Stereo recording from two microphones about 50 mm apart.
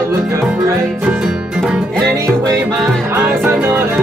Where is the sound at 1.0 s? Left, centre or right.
Centre.